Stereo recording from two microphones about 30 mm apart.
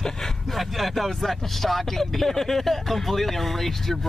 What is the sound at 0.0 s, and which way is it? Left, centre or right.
Vehicle, centre.